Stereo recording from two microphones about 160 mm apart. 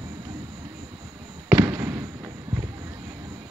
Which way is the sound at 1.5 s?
15° right (ahead or behind).